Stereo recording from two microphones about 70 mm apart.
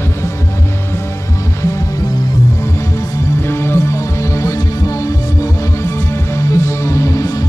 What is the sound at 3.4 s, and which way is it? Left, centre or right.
Music, left.